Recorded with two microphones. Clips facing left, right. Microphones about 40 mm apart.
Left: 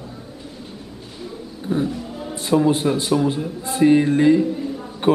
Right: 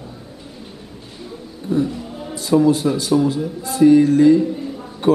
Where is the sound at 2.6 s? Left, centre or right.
Left.